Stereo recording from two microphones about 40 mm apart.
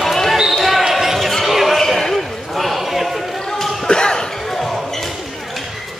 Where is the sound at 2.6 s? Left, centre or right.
Centre.